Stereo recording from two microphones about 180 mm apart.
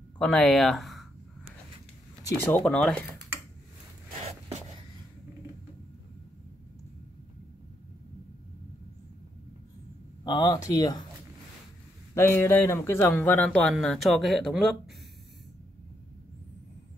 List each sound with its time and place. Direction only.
0.2 s a man's voice: 5° left (ahead or behind)
2.2 s a man's voice: 10° left (ahead or behind)
4.2 s writing: 40° right (ahead or behind)
10.2 s speech: 25° left (ahead or behind)
12.1 s a man's voice: 15° left (ahead or behind)